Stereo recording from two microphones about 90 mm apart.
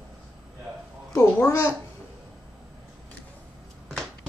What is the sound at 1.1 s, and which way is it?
Speech, 30° left (ahead or behind).